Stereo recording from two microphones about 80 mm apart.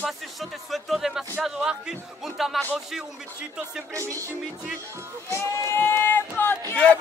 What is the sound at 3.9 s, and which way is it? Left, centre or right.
Music, right.